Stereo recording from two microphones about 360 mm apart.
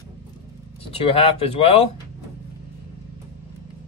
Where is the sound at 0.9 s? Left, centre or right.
Centre.